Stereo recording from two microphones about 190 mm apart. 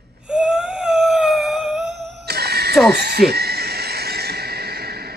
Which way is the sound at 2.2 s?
55° right (ahead or behind).